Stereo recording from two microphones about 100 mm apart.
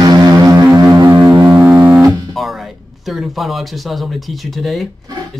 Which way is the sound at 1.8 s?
30° right (ahead or behind).